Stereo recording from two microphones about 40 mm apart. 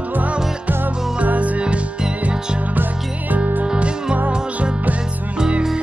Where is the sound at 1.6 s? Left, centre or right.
Right.